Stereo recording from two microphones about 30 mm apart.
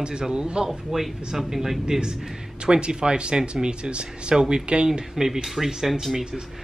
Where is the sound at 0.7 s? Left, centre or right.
Centre.